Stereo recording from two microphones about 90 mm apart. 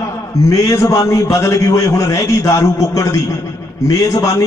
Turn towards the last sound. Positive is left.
turn(degrees=40)  # may be behind; listen again after turning